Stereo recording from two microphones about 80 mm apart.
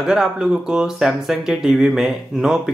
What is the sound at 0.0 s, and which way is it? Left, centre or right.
Speech, centre.